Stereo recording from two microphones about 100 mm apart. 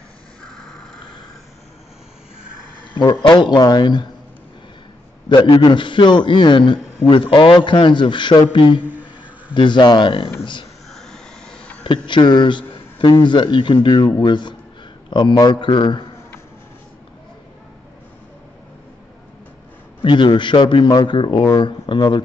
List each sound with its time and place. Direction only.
0.4 s a sound: 5° left (ahead or behind)
3.2 s speech: 50° left (ahead or behind)
5.3 s speech: 50° left (ahead or behind)
8.8 s a sound: 15° right (ahead or behind)
9.5 s speech: 50° left (ahead or behind)
10.9 s a sound: 5° left (ahead or behind)
12.1 s a man's voice: 50° left (ahead or behind)
20.0 s speech: 55° left (ahead or behind)
21.2 s speech: 55° left (ahead or behind)